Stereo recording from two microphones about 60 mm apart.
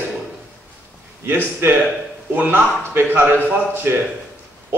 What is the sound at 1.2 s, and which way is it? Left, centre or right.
A man's voice, right.